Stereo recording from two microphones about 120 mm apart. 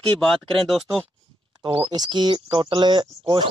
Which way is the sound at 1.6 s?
45° right (ahead or behind).